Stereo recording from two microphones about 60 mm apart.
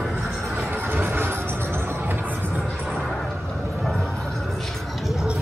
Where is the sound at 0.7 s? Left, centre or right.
Right.